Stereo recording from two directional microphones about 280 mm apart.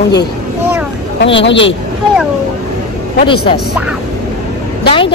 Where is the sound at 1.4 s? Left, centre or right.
Left.